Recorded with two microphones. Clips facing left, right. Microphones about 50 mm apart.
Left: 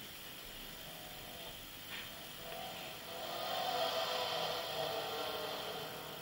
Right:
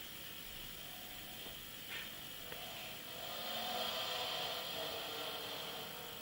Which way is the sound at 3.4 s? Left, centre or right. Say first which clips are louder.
Left 5 dB; centre.